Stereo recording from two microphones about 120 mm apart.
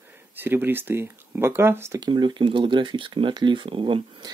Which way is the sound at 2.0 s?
40° right (ahead or behind).